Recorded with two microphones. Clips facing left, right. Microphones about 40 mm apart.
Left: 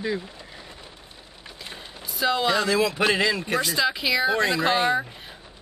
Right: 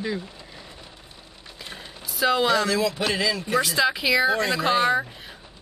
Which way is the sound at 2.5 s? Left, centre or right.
Left.